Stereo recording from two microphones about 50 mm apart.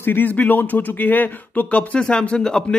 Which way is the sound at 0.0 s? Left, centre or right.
Left.